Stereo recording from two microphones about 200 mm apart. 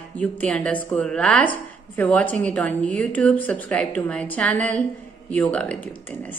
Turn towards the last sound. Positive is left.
turn(degrees=10)  # may be behind; listen again after turning